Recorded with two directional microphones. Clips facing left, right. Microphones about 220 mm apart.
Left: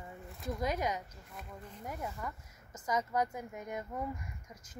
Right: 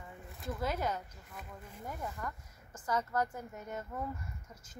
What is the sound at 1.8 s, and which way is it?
A woman's voice, 10° left (ahead or behind).